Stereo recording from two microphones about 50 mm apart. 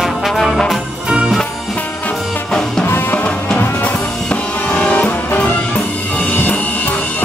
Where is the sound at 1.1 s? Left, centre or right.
Centre.